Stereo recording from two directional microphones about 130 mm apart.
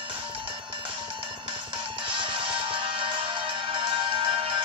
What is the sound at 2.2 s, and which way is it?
Music, 40° right (ahead or behind).